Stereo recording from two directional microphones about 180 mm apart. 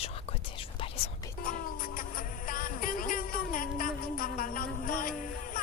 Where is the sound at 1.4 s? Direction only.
50° left (ahead or behind).